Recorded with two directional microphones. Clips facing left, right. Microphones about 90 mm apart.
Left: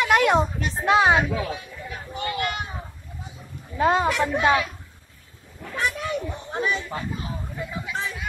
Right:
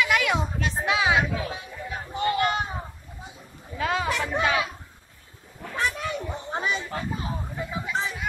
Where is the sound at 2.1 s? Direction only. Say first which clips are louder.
Right 4 dB; 35° right (ahead or behind).